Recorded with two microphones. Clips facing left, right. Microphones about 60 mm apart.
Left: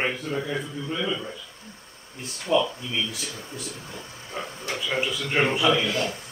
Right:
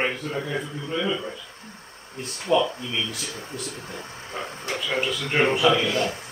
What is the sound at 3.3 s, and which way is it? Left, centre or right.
Speech, right.